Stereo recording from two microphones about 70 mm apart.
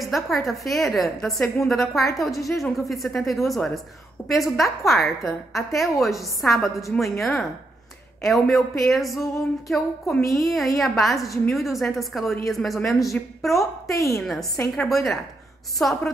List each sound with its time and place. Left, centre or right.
0.0 s a woman's voice: centre
13.9 s a woman's voice: left
14.2 s a woman's voice: centre